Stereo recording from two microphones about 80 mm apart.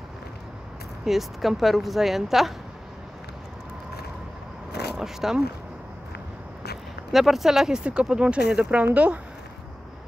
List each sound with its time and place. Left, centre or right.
1.0 s speech: centre
4.9 s speech: centre
7.1 s speech: centre